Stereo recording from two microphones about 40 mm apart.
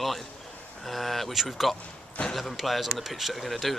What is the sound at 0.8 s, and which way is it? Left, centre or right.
Speech, centre.